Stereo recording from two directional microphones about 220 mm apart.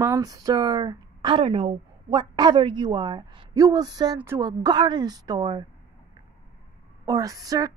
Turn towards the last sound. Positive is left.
turn(degrees=-15)  # may be behind; listen again after turning